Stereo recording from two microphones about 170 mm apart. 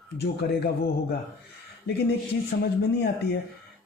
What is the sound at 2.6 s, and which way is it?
Speech, 80° left.